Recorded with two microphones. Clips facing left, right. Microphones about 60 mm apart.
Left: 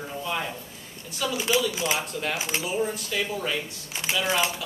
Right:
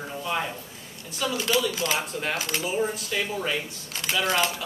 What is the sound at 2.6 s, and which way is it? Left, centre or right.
Speech, centre.